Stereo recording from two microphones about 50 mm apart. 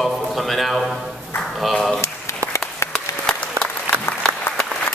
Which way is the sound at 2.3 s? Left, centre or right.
Left.